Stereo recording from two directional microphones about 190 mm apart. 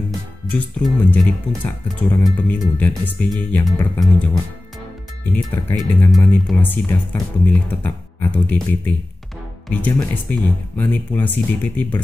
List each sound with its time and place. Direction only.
0.5 s speech: 5° left (ahead or behind)